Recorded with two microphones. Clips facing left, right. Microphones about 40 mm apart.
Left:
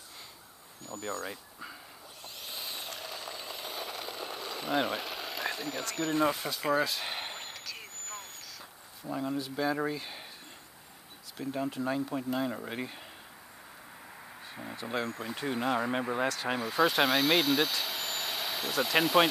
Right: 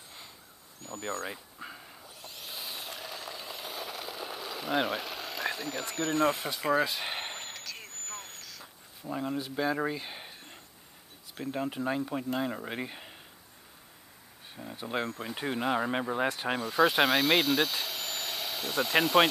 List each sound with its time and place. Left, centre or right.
1.0 s speech: right
2.2 s a sound: centre
5.9 s speech: centre
6.8 s a sound: centre
7.5 s vehicle: centre
9.1 s speech: centre
11.5 s speech: centre
14.5 s a sound: left
15.2 s speech: centre
16.2 s speech: right
16.5 s speech: centre